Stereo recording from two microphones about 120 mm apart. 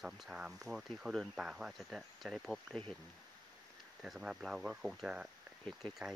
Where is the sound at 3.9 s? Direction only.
5° right (ahead or behind).